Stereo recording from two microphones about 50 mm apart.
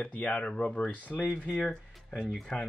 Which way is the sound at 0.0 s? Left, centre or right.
Left.